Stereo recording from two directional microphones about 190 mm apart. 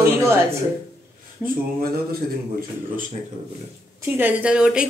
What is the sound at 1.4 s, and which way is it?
Speech, 50° right (ahead or behind).